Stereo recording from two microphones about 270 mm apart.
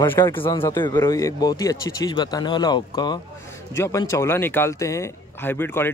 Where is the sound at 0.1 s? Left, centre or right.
Centre.